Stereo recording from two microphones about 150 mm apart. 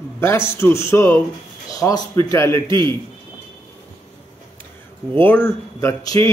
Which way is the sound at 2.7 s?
30° right (ahead or behind).